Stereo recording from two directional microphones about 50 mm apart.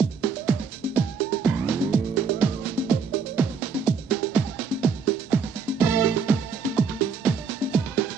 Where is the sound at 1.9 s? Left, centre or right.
Right.